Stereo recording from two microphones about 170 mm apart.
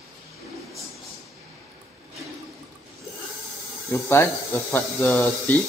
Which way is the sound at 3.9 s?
15° left (ahead or behind).